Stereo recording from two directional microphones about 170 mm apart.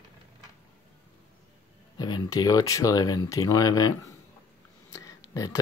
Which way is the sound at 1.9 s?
25° left (ahead or behind).